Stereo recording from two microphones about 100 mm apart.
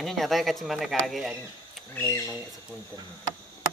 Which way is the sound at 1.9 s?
15° left (ahead or behind).